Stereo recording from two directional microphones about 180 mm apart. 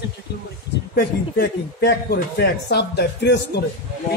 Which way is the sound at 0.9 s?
60° left (ahead or behind).